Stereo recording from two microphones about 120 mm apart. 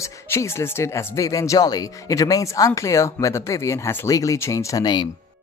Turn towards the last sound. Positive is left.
turn(degrees=35)  # may be behind; listen again after turning